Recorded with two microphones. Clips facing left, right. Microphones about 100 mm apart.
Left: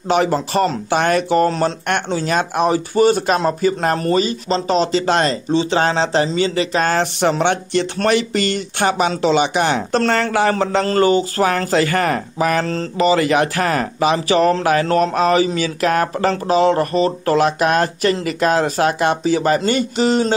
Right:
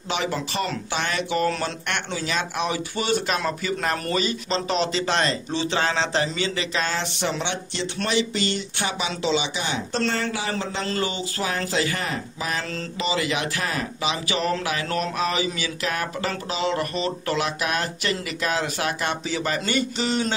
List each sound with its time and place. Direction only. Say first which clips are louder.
0.1 s speech: left 10 dB; 45° left (ahead or behind)
12.6 s speech: left 11 dB; 40° left (ahead or behind)